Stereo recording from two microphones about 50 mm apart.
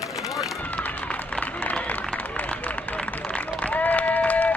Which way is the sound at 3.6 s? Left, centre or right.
Left.